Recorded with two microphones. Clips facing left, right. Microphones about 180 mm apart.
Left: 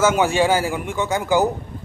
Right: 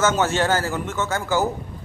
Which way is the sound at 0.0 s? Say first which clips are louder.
Left 3 dB; 10° left (ahead or behind).